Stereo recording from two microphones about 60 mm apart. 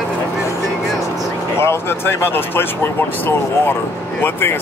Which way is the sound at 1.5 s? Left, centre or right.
Left.